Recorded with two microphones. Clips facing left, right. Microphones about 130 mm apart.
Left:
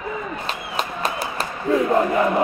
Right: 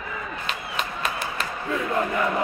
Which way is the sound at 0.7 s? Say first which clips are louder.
Left 5 dB; 35° left (ahead or behind).